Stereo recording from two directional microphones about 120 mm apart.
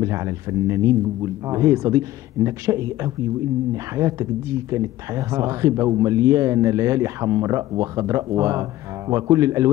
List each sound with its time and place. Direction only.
0.0 s speech: 25° right (ahead or behind)